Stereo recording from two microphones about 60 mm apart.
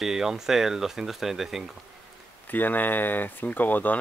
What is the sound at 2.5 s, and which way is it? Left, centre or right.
Speech, left.